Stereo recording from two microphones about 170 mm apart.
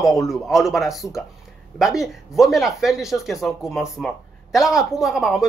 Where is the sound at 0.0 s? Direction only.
20° left (ahead or behind).